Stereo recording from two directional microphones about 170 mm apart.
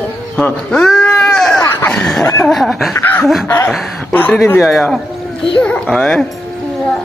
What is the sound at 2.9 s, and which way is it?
Chuckle, 15° left (ahead or behind).